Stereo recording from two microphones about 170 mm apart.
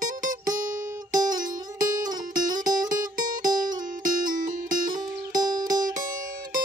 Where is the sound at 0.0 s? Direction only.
50° right (ahead or behind).